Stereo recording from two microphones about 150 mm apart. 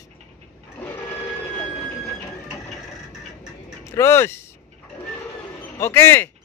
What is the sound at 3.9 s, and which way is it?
Speech, 20° left (ahead or behind).